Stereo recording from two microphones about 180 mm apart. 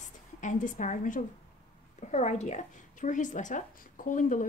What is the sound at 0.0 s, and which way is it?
A woman's voice, 45° left (ahead or behind).